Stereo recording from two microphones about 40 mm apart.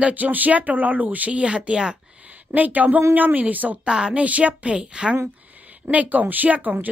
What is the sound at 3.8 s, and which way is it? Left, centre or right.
Speech, right.